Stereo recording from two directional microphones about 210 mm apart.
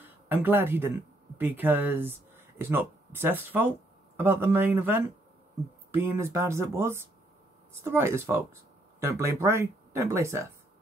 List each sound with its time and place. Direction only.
0.0 s speech: 10° right (ahead or behind)